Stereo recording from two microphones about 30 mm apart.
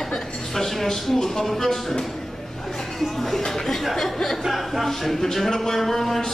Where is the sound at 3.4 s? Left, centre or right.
Centre.